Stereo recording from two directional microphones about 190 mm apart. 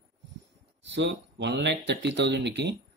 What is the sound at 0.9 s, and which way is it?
Speech, 65° right (ahead or behind).